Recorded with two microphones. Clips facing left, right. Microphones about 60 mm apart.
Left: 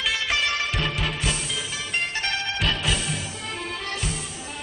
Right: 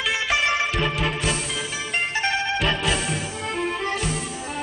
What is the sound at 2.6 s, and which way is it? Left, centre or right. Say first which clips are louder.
Music: right 3 dB; centre.